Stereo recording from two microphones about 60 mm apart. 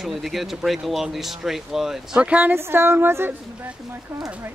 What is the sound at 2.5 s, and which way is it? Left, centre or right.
Speech, right.